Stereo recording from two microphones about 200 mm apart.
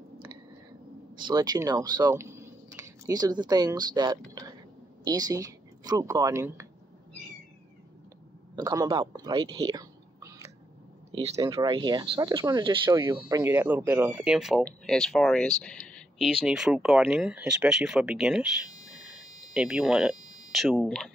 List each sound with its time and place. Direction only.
1.1 s speech: 20° right (ahead or behind)
8.5 s speech: 20° right (ahead or behind); by 18.5 s 5° right (ahead or behind)
19.1 s a sound: 5° right (ahead or behind)